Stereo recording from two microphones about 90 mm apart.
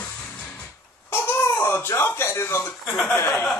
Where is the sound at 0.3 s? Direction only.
15° left (ahead or behind).